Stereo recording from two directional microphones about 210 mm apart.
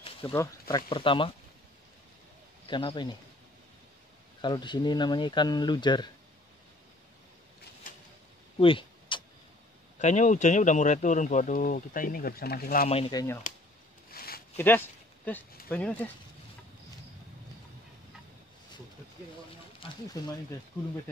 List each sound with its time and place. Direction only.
0.3 s speech: 15° left (ahead or behind)
2.7 s speech: 25° left (ahead or behind)
4.4 s speech: 20° left (ahead or behind)
8.5 s a sound: 25° left (ahead or behind)
9.9 s speech: 35° left (ahead or behind)
12.8 s speech: 25° left (ahead or behind)
14.1 s a sound: 45° left (ahead or behind)
14.6 s a sound: 10° left (ahead or behind)
15.7 s speech: 5° left (ahead or behind)
19.8 s speech: 20° left (ahead or behind)